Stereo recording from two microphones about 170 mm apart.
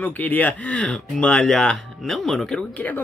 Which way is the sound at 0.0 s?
10° left (ahead or behind).